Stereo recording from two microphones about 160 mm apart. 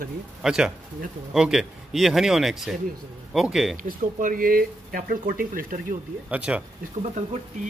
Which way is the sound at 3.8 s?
55° right (ahead or behind).